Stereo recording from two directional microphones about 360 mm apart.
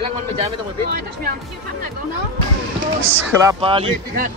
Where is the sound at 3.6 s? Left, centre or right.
Centre.